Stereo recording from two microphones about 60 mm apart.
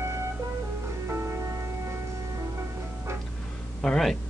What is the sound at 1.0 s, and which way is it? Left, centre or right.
Music, right.